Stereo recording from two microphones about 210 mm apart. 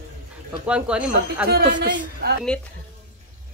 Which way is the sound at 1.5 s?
50° right (ahead or behind).